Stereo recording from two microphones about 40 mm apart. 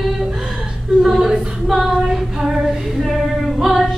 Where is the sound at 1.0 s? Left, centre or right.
Centre.